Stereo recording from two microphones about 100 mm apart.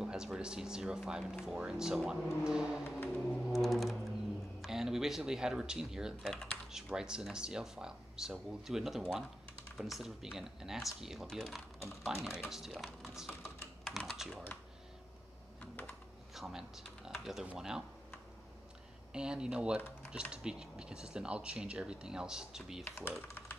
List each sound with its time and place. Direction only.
0.0 s speech: 5° right (ahead or behind)
3.3 s music: centre (ahead or behind)
4.6 s speech: 5° right (ahead or behind)
12.2 s speech: 25° left (ahead or behind)
12.4 s speech: 5° right (ahead or behind)
13.3 s computer keyboard: 25° left (ahead or behind)
13.8 s typing: centre (ahead or behind)
16.3 s speech: 5° right (ahead or behind)
19.1 s speech: 10° right (ahead or behind)
22.8 s speech: 25° left (ahead or behind)